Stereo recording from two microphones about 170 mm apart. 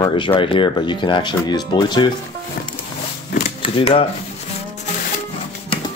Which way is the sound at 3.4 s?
35° left (ahead or behind).